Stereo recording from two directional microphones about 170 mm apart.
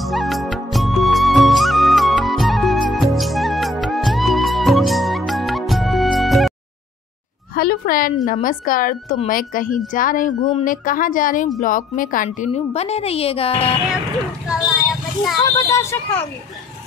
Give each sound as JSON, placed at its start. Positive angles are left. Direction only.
{"t": 0.0, "sound": "music", "side_deg": 0}
{"t": 7.5, "sound": "a sound", "side_deg": 55}
{"t": 8.3, "sound": "a woman's voice", "side_deg": 55}
{"t": 15.4, "sound": "speech", "side_deg": 20}